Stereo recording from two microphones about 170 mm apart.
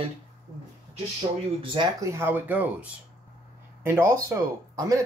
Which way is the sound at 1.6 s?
30° right (ahead or behind).